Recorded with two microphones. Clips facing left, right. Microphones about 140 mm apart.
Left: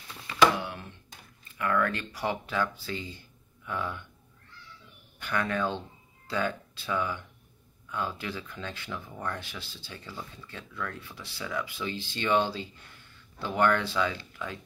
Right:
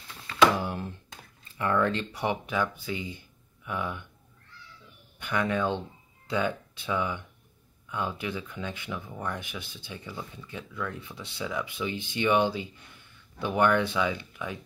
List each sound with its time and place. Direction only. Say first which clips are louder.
0.6 s thunk: right 5 dB; 35° right (ahead or behind)
1.5 s speech: right 2 dB; 25° right (ahead or behind)
5.2 s speech: right 2 dB; 20° right (ahead or behind)